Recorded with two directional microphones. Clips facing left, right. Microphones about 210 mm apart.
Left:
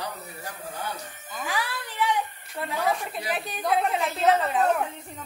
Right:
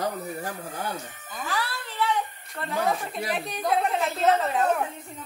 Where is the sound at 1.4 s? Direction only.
15° left (ahead or behind).